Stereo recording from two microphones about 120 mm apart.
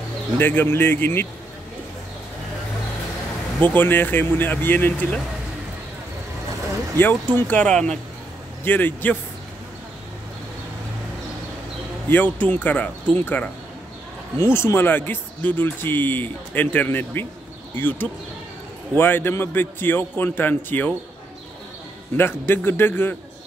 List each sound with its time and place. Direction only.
0.4 s speech: 15° left (ahead or behind)
3.6 s speech: 15° left (ahead or behind)
7.0 s speech: 15° left (ahead or behind)
12.1 s speech: 15° left (ahead or behind)
22.1 s speech: 20° left (ahead or behind)